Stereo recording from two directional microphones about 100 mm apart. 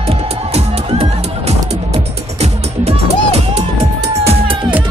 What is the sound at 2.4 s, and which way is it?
Music, 90° right.